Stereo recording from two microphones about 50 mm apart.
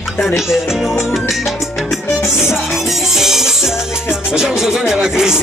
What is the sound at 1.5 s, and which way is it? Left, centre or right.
Salsa music, centre.